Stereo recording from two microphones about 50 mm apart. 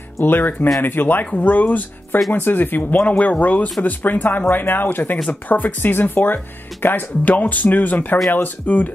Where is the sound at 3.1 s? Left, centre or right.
Left.